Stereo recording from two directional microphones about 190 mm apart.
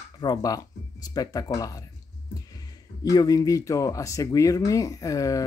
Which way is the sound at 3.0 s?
20° left (ahead or behind).